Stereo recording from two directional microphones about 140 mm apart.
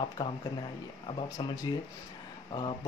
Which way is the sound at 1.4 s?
35° left (ahead or behind).